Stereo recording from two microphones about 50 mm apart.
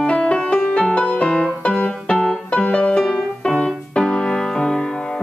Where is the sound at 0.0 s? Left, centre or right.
Left.